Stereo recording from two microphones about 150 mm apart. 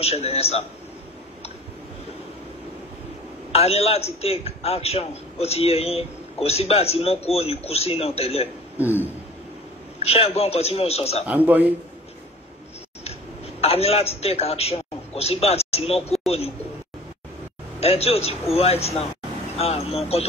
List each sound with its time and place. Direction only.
0.0 s a man's voice: 45° left (ahead or behind)
3.5 s a man's voice: 40° left (ahead or behind)
8.7 s speech: 10° right (ahead or behind)
10.0 s a man's voice: 40° left (ahead or behind)
11.2 s speech: 10° right (ahead or behind)
13.6 s a man's voice: 40° left (ahead or behind)
17.7 s a man's voice: 45° left (ahead or behind)